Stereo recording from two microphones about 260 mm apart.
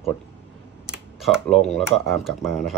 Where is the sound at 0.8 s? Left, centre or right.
Centre.